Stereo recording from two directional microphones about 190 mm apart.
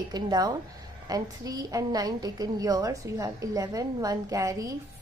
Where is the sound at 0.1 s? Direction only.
20° right (ahead or behind).